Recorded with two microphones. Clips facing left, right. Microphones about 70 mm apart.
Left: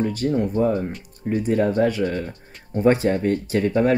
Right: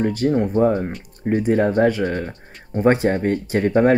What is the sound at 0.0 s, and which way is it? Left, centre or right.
Speech, right.